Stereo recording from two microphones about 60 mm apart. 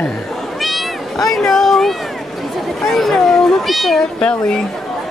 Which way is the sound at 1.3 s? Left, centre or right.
Centre.